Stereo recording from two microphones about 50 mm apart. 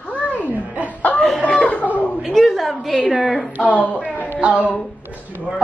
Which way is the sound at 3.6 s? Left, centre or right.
Left.